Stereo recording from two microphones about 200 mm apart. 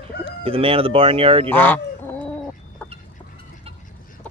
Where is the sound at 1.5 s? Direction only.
10° left (ahead or behind).